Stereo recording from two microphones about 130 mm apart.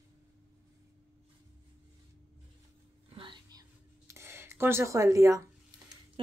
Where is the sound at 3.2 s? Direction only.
35° right (ahead or behind).